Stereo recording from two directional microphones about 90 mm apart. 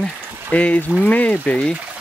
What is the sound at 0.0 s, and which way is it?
Speech, 15° left (ahead or behind).